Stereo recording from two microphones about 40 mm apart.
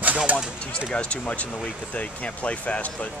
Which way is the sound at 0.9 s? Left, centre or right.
Left.